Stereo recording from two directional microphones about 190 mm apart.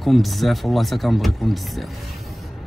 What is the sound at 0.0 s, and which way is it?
Speech, centre (ahead or behind).